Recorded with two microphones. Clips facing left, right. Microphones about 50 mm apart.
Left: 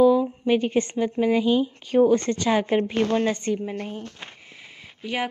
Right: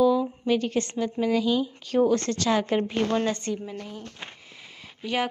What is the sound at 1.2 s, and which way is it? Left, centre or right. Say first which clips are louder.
A woman's voice: left 3 dB; left.